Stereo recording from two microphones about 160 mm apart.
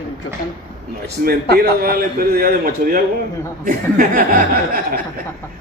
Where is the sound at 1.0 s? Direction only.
75° right (ahead or behind).